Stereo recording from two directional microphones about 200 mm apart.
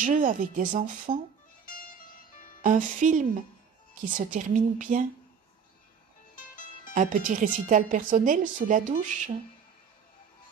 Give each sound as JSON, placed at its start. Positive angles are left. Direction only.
{"t": 0.0, "sound": "speech", "side_deg": -40}
{"t": 2.6, "sound": "speech", "side_deg": -40}
{"t": 6.9, "sound": "speech", "side_deg": -40}